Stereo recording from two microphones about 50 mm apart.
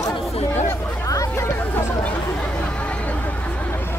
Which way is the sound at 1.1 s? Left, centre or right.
Left.